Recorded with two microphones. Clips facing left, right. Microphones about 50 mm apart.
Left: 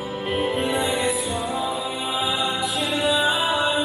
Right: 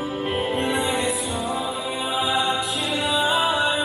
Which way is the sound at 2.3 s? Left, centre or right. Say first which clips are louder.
Right 5 dB; right.